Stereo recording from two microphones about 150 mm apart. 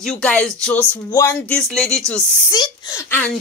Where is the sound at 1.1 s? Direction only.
20° left (ahead or behind).